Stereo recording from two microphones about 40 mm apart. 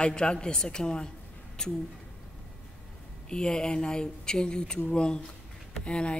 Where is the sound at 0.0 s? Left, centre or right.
Centre.